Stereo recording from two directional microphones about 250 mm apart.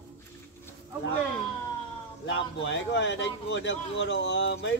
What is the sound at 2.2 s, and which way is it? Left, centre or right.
A man's voice, left.